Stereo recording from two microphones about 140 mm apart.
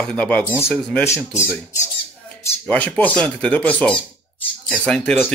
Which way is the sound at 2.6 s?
10° left (ahead or behind).